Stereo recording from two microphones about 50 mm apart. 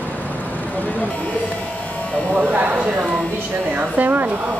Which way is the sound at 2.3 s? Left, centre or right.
Right.